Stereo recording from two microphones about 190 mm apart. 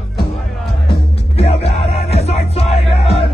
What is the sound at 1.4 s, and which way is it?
Music, 30° left (ahead or behind).